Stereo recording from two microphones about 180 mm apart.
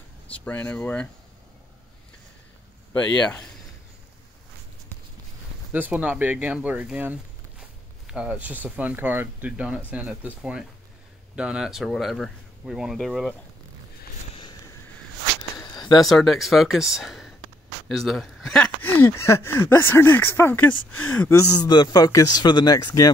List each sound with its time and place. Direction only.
0.3 s speech: 10° left (ahead or behind)
2.9 s speech: 5° left (ahead or behind)
5.7 s speech: 10° right (ahead or behind)
15.7 s a sound: 20° left (ahead or behind)
16.1 s speech: centre (ahead or behind); by 23.1 s 20° left (ahead or behind)